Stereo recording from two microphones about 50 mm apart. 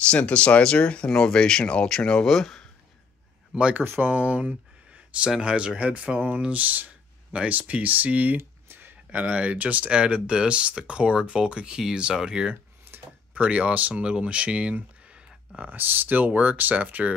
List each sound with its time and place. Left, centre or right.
0.0 s speech: left; by 2.6 s centre
3.8 s speech: right
4.1 s a sound: right
5.4 s speech: right
8.4 s a sound: right
9.1 s speech: right
15.5 s speech: right